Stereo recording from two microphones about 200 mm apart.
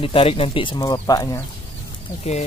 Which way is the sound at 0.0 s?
30° left (ahead or behind).